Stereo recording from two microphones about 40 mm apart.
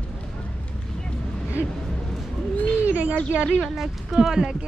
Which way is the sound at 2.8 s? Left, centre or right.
Right.